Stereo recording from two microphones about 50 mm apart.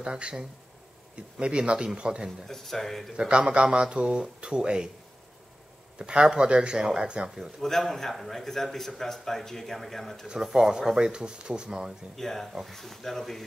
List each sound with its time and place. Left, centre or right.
0.0 s speech: centre
2.4 s a man's voice: centre
3.2 s speech: centre
5.9 s speech: centre
7.6 s a man's voice: centre
10.2 s speech: centre
12.2 s a man's voice: centre